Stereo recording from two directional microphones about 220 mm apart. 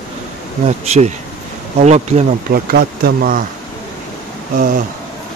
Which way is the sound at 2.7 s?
40° right (ahead or behind).